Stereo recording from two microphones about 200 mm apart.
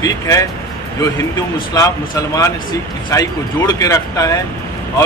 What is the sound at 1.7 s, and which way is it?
Speech, 15° left (ahead or behind).